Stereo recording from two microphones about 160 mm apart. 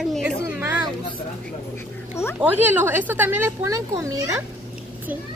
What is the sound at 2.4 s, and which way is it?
Speech, 10° right (ahead or behind).